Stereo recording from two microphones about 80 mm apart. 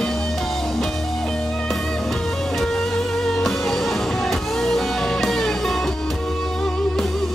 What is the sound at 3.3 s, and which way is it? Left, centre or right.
Music, centre.